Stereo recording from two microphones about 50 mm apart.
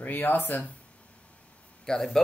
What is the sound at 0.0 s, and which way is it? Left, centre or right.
Speech, left.